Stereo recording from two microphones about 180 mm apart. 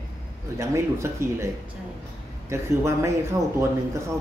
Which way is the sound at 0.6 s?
15° right (ahead or behind).